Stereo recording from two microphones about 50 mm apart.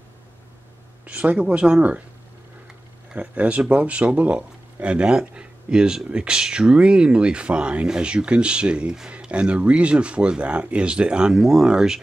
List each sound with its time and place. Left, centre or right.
1.0 s speech: right
3.1 s speech: right